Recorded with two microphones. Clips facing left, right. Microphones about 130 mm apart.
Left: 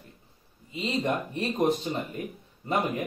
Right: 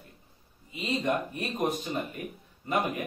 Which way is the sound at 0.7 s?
30° left (ahead or behind).